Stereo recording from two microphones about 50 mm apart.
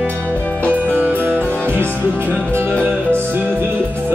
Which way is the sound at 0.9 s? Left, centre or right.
Right.